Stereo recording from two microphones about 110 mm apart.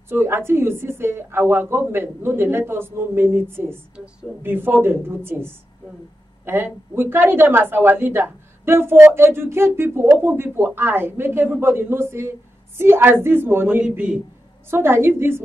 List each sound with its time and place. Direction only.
0.1 s a man's voice: 20° right (ahead or behind)
3.9 s a woman's voice: 10° right (ahead or behind)
14.7 s a man's voice: 20° right (ahead or behind)